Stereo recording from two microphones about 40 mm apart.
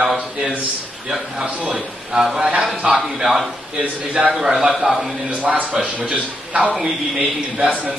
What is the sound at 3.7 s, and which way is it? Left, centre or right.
Speech, right.